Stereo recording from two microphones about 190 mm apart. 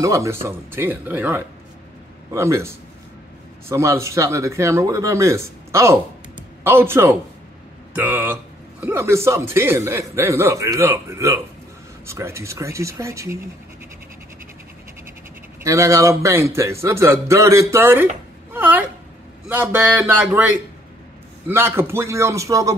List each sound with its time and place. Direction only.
0.0 s a man's voice: 15° right (ahead or behind)
15.6 s a man's voice: 15° right (ahead or behind)